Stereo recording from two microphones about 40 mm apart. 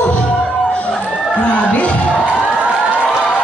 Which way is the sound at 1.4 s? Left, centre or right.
Left.